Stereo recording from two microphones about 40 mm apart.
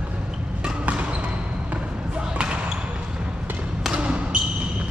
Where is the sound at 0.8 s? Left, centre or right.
Right.